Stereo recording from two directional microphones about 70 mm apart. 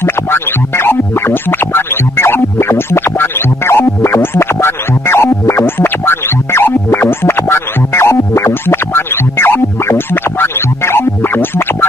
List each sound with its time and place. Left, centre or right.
0.0 s music: left